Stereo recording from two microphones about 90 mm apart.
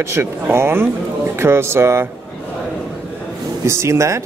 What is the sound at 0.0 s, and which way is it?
Speech, 30° right (ahead or behind).